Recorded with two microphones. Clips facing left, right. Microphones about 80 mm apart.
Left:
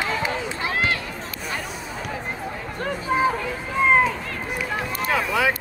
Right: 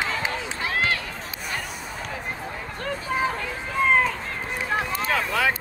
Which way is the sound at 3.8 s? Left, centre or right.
Centre.